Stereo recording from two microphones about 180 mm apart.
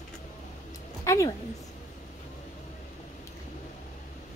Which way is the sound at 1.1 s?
15° left (ahead or behind).